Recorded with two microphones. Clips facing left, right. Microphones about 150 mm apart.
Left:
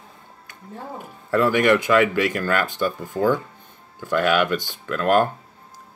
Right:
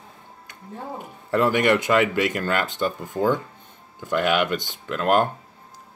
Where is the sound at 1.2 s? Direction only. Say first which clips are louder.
Left 2 dB; 20° right (ahead or behind).